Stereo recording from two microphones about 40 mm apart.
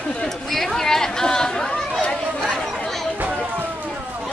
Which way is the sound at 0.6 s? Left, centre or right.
Centre.